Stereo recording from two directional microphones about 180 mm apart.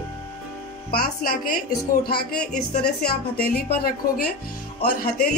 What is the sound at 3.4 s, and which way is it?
Speech, 55° left (ahead or behind).